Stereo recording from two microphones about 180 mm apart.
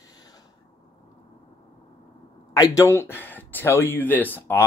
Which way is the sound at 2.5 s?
20° left (ahead or behind).